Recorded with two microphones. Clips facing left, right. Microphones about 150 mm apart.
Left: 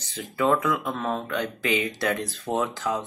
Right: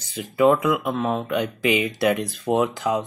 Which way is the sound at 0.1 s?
10° right (ahead or behind).